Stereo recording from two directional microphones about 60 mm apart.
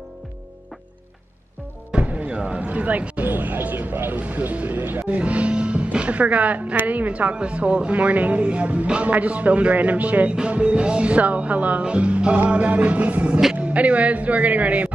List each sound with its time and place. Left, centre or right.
1.9 s speech: centre
5.2 s speech: right